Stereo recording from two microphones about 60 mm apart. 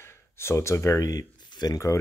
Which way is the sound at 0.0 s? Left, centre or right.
Left.